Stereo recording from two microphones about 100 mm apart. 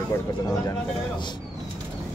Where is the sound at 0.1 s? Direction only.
30° left (ahead or behind).